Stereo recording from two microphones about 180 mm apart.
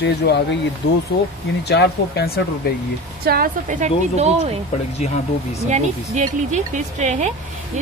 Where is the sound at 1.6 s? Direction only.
65° left (ahead or behind).